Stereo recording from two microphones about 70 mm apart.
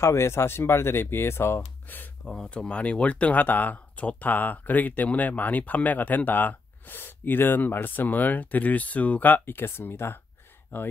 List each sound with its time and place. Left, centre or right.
0.0 s speech: left
2.2 s speech: centre; by 10.9 s left